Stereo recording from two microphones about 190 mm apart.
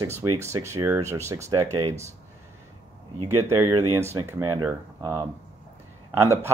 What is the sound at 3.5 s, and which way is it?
Speech, 15° right (ahead or behind).